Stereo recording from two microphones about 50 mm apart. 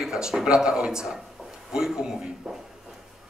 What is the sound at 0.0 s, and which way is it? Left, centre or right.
A man's voice, centre.